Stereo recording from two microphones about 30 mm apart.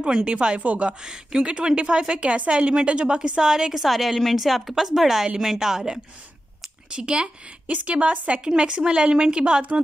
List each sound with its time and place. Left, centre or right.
0.0 s a woman's voice: right
0.6 s a woman's voice: right
1.0 s a woman's voice: right
3.4 s a woman's voice: centre
3.8 s a woman's voice: centre
6.9 s a woman's voice: right
7.6 s a woman's voice: right
8.5 s a woman's voice: right